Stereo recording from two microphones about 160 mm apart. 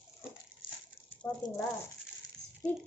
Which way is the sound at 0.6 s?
35° left (ahead or behind).